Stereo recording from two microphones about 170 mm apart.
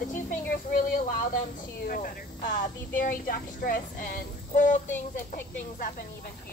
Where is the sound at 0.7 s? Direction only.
55° left (ahead or behind).